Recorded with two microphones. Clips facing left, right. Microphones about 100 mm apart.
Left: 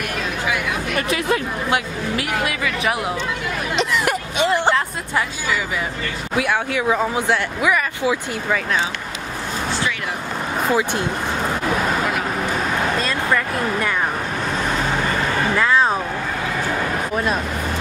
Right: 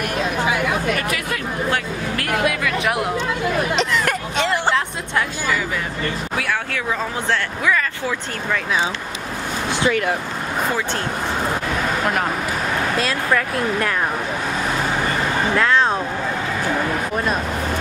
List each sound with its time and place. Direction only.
1.7 s speech: 5° left (ahead or behind)
3.7 s a sound: 10° left (ahead or behind)
4.7 s music: 5° left (ahead or behind)
6.3 s speech: 20° left (ahead or behind)
13.0 s speech: centre (ahead or behind)
15.5 s music: 5° left (ahead or behind)